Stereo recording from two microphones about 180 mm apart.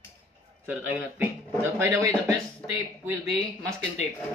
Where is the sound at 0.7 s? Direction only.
15° right (ahead or behind).